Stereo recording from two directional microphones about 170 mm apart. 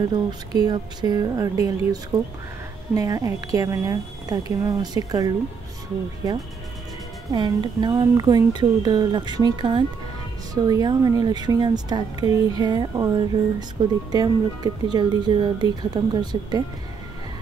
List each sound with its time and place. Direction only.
0.1 s speech: 25° right (ahead or behind)
7.3 s speech: 25° right (ahead or behind)